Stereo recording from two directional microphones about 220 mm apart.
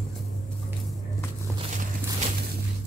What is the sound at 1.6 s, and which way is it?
Walk, 30° right (ahead or behind).